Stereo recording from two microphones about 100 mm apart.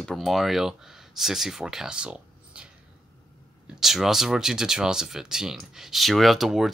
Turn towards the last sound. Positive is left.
turn(degrees=0)  # may be behind; listen again after turning